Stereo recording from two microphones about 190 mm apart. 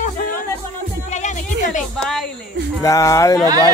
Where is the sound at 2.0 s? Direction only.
5° left (ahead or behind).